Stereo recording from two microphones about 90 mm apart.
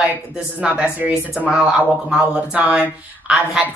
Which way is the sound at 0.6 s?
15° right (ahead or behind).